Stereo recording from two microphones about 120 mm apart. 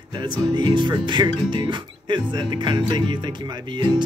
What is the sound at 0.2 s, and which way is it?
Music, 40° right (ahead or behind).